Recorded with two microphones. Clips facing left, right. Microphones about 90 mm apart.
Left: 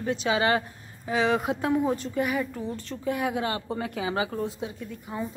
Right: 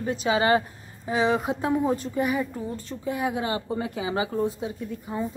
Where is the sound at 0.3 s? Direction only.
25° right (ahead or behind).